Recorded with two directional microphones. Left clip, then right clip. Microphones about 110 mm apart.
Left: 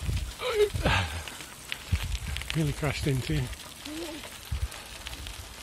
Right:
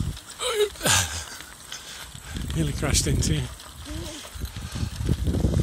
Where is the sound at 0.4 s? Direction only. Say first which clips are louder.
Right 2 dB; 40° right (ahead or behind).